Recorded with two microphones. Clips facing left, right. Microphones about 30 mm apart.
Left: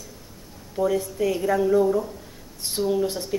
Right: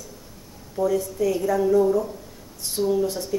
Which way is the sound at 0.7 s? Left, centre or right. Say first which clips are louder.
Even; left.